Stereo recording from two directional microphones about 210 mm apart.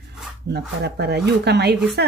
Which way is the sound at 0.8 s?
50° right (ahead or behind).